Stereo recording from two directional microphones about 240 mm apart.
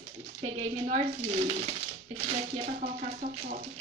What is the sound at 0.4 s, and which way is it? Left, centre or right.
Speech, right.